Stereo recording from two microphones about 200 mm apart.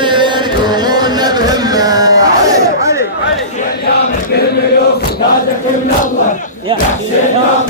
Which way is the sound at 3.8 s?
55° left (ahead or behind).